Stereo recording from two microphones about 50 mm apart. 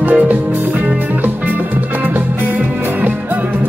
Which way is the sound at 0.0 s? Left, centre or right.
Right.